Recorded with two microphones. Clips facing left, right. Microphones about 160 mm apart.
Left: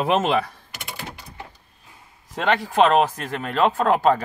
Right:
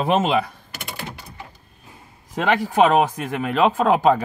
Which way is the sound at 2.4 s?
10° right (ahead or behind).